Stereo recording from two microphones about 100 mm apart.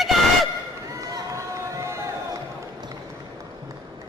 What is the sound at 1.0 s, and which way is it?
Run, 35° right (ahead or behind).